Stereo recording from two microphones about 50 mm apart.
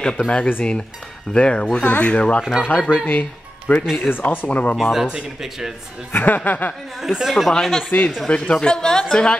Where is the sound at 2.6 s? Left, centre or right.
Left.